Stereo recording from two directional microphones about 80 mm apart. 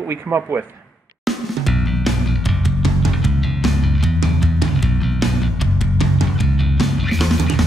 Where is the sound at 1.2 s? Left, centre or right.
Centre.